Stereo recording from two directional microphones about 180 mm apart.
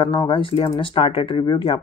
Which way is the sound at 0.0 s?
25° left (ahead or behind).